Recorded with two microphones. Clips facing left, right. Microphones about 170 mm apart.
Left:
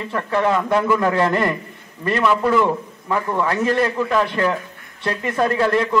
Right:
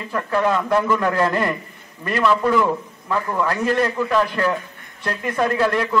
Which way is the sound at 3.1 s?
15° left (ahead or behind).